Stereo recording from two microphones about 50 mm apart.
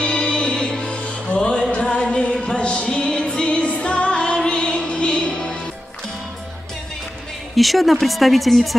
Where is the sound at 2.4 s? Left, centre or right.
Centre.